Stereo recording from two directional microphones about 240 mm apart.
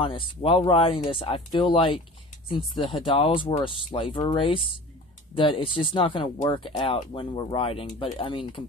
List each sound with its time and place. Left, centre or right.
0.0 s speech: left